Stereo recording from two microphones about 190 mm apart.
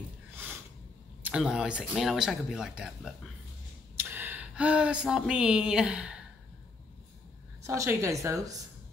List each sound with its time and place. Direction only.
0.3 s a sound: 10° right (ahead or behind)
1.2 s speech: 5° right (ahead or behind)
7.6 s a woman's voice: 15° right (ahead or behind)